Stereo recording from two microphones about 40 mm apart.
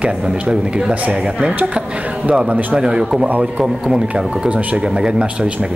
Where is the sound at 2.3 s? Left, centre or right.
Right.